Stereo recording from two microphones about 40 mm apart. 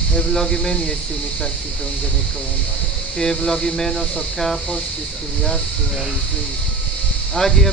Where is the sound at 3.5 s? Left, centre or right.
Centre.